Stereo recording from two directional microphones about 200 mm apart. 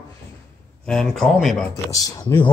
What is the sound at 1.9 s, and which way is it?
Speech, 15° left (ahead or behind).